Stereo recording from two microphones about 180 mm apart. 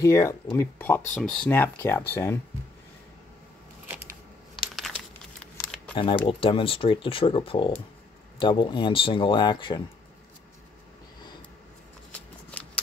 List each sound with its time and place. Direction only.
0.0 s speech: 15° left (ahead or behind)
4.7 s crumpling: 5° left (ahead or behind)
5.9 s speech: 30° left (ahead or behind)
12.1 s shuffling cards: 5° left (ahead or behind)